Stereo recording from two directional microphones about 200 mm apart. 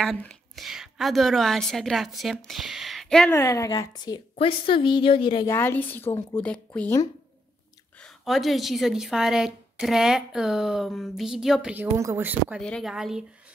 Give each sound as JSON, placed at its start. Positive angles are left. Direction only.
{"t": 0.0, "sound": "a woman's voice", "side_deg": 0}
{"t": 3.3, "sound": "a woman's voice", "side_deg": 15}
{"t": 5.5, "sound": "a woman's voice", "side_deg": 10}